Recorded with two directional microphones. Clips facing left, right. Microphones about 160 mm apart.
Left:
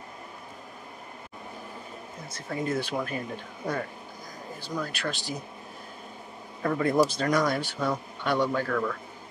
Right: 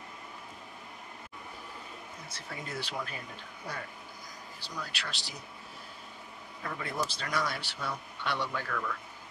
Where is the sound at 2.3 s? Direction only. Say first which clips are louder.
Left 11 dB; 50° left (ahead or behind).